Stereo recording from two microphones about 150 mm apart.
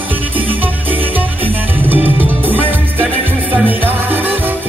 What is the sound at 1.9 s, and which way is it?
Music, 10° right (ahead or behind).